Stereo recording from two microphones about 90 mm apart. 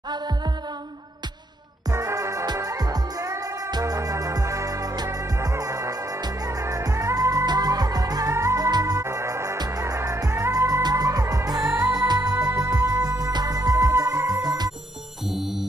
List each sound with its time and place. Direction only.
1.9 s music: 40° right (ahead or behind)
9.0 s music: 35° right (ahead or behind)